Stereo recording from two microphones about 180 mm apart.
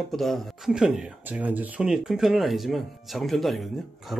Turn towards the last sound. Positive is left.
turn(degrees=0)  # may be behind; listen again after turning